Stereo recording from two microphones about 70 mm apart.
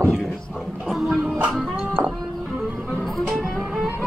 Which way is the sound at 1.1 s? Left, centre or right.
Centre.